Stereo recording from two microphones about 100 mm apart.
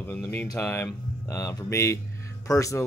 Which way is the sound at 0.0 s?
20° left (ahead or behind).